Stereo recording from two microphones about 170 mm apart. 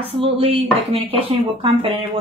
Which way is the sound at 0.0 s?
35° right (ahead or behind).